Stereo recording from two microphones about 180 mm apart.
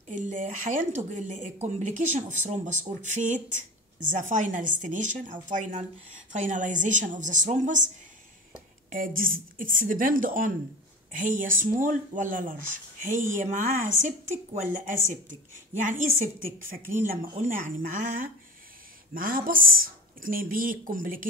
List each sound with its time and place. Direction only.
0.1 s a woman's voice: 45° right (ahead or behind)
8.9 s a woman's voice: 50° right (ahead or behind)